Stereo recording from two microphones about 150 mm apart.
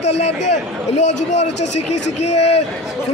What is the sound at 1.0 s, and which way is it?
A man's voice, 50° left (ahead or behind).